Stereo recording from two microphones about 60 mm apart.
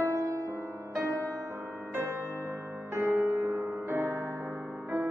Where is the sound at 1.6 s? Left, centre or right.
Right.